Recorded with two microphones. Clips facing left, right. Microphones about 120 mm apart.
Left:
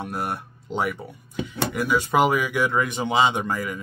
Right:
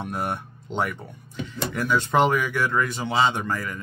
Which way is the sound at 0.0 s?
Centre (ahead or behind).